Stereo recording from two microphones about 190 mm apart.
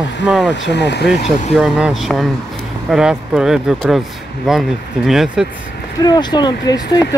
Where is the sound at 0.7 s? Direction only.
65° left (ahead or behind).